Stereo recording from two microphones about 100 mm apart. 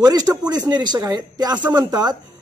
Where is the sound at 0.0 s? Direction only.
40° right (ahead or behind).